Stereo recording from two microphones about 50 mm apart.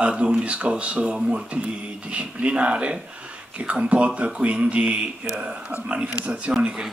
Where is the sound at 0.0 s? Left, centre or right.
Right.